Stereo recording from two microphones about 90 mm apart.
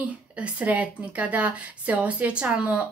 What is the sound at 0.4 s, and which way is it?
A woman's voice, 15° right (ahead or behind).